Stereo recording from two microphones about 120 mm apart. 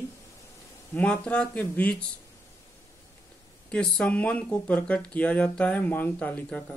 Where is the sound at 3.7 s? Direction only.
5° left (ahead or behind).